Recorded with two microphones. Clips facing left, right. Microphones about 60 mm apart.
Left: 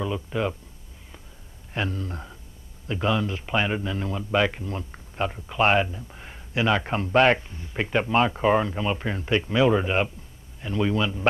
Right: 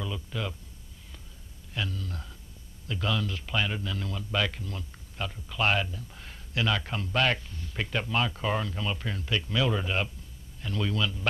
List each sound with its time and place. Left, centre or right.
0.0 s speech: left
1.7 s speech: left